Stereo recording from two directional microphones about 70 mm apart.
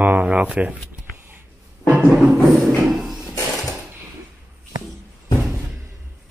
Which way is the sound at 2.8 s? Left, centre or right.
Centre.